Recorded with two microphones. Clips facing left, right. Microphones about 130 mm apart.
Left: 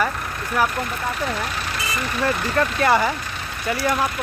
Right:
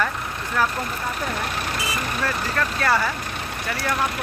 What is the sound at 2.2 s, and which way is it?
Speech, 20° left (ahead or behind).